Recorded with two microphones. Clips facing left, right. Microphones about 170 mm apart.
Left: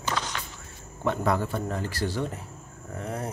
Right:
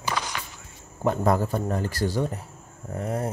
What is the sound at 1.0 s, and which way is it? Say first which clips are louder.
Speech: right 3 dB; 40° right (ahead or behind).